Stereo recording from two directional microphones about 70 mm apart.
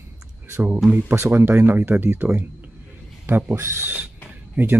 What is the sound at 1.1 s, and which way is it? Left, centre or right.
Speech, right.